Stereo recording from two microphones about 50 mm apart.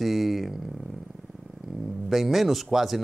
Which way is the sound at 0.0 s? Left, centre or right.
Centre.